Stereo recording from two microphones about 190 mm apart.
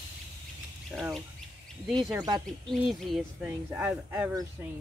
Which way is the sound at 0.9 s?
Centre (ahead or behind).